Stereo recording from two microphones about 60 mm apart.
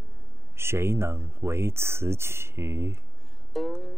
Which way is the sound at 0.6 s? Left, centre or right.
Right.